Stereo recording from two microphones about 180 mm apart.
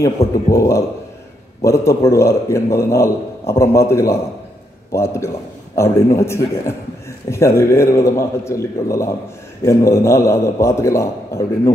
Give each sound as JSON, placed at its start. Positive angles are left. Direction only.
{"t": 0.5, "sound": "a man's voice", "side_deg": 15}